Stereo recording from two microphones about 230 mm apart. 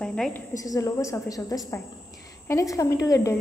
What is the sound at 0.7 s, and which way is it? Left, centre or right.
Speech, centre.